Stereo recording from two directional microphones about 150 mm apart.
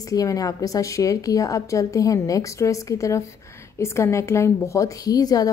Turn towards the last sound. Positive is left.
turn(degrees=25)  # may be behind; listen again after turning